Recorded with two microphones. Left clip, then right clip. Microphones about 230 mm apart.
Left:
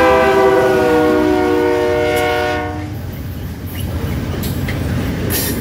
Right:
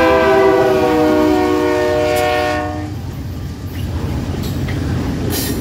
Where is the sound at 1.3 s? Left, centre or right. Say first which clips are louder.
Even; centre.